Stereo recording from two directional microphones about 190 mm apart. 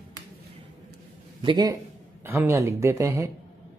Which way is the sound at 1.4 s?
25° right (ahead or behind).